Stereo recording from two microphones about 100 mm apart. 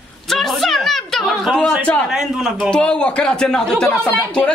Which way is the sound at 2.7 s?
10° left (ahead or behind).